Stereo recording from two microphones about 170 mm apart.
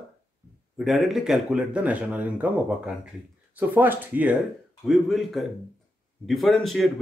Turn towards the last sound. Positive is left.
turn(degrees=0)  # may be behind; listen again after turning